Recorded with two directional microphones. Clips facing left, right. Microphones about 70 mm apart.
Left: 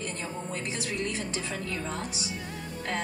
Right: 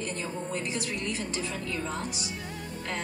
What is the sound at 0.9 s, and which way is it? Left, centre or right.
Speech, left.